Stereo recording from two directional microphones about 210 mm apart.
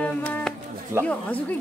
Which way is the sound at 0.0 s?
5° left (ahead or behind).